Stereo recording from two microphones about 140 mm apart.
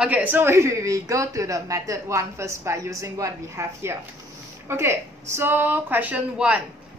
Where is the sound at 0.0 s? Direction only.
10° right (ahead or behind).